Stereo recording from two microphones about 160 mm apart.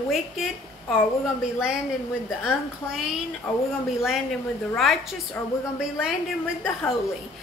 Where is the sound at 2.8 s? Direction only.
10° left (ahead or behind).